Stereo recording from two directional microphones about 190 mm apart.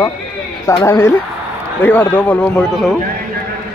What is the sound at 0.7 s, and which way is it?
A man's voice, 15° left (ahead or behind).